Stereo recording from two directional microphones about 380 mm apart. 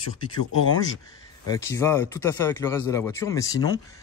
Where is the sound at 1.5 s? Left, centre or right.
Centre.